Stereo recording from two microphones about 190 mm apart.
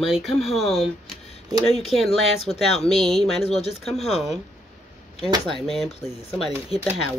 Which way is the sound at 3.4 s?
35° left (ahead or behind).